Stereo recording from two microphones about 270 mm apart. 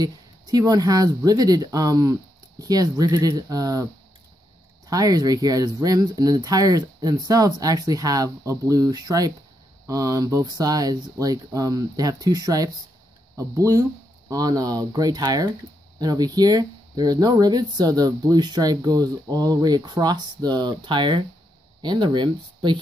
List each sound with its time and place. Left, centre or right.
0.0 s speech: centre